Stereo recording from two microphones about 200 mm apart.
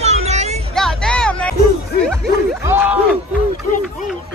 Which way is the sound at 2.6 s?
10° right (ahead or behind).